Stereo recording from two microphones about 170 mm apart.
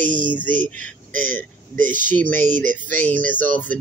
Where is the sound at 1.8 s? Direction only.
50° right (ahead or behind).